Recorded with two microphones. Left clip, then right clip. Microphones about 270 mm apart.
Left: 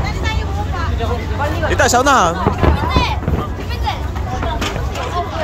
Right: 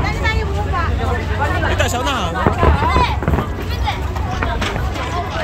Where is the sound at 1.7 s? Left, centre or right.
Centre.